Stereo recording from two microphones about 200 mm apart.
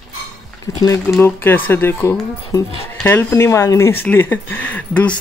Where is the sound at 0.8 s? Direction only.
15° left (ahead or behind).